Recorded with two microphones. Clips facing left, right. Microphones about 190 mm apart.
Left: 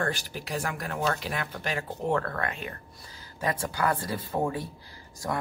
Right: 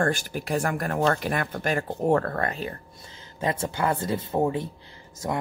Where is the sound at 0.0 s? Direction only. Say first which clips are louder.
Right 6 dB; 50° right (ahead or behind).